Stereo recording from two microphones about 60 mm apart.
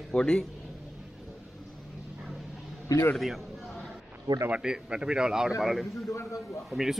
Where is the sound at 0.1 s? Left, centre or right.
Centre.